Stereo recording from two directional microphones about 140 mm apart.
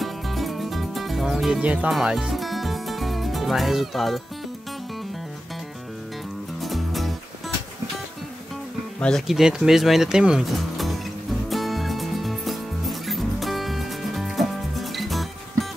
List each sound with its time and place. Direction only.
0.0 s music: centre (ahead or behind)
6.6 s music: centre (ahead or behind)
9.0 s speech: centre (ahead or behind)
11.5 s music: centre (ahead or behind)